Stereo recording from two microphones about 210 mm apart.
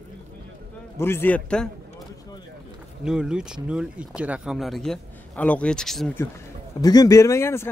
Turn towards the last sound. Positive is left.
turn(degrees=10)  # may be behind; listen again after turning